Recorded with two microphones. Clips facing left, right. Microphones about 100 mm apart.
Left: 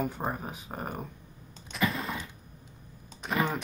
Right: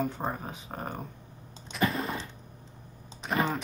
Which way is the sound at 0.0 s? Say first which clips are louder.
Even; 5° left (ahead or behind).